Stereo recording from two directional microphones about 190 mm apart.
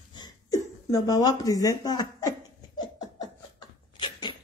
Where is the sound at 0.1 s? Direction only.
20° left (ahead or behind).